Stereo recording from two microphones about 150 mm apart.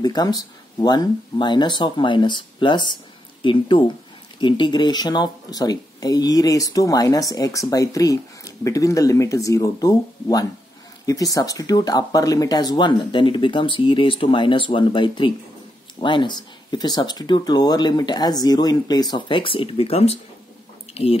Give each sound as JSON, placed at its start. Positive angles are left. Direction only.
{"t": 0.0, "sound": "speech", "side_deg": 25}